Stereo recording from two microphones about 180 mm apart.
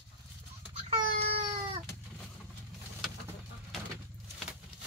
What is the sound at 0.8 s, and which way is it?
Baby cry, 35° right (ahead or behind).